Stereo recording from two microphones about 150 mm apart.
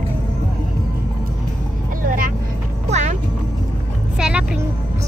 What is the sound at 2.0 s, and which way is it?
Vehicle, 65° right (ahead or behind).